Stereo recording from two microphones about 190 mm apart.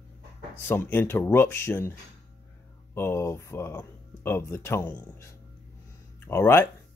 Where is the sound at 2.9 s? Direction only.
15° left (ahead or behind).